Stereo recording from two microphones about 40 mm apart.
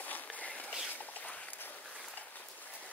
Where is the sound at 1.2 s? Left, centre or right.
Left.